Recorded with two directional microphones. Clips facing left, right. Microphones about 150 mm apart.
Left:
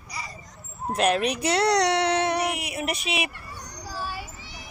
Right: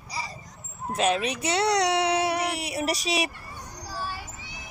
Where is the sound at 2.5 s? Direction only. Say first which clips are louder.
Right 2 dB; 35° right (ahead or behind).